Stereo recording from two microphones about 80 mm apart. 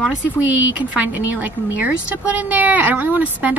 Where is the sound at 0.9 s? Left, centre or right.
Right.